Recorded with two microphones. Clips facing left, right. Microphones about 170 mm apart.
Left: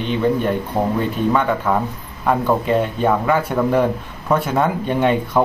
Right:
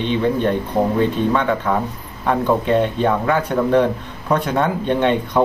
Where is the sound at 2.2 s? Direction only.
5° left (ahead or behind).